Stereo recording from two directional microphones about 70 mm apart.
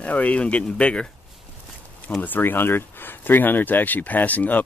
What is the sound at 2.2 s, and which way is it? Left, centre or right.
Speech, left.